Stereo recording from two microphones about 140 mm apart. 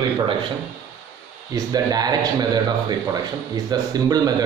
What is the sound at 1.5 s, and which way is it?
A man's voice, 30° right (ahead or behind).